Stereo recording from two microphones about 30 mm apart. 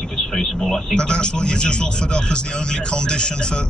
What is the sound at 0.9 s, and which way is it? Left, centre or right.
A man's voice, left.